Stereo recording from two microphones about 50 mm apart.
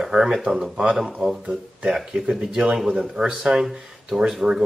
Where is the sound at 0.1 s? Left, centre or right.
Centre.